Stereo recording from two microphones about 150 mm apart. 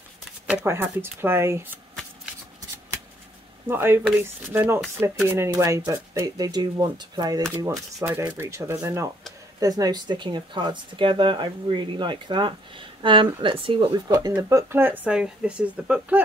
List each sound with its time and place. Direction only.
0.7 s speech: 15° right (ahead or behind)
3.6 s speech: 15° right (ahead or behind)
7.7 s speech: 10° right (ahead or behind); by 14.3 s 25° right (ahead or behind)
14.3 s speech: 15° right (ahead or behind)